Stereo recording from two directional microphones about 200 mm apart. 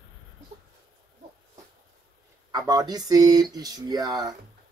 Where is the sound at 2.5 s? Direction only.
20° right (ahead or behind).